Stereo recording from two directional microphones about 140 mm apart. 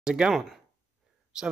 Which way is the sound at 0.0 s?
5° right (ahead or behind).